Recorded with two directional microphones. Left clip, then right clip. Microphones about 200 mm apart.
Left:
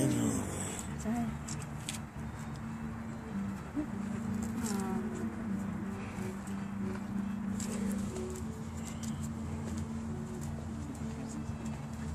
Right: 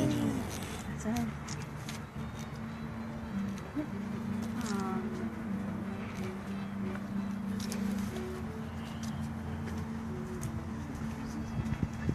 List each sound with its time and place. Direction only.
0.0 s music: 15° left (ahead or behind)